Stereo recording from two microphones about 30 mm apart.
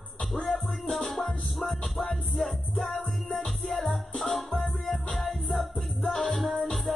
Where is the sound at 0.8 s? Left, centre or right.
Centre.